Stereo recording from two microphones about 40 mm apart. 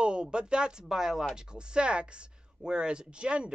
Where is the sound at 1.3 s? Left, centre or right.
Right.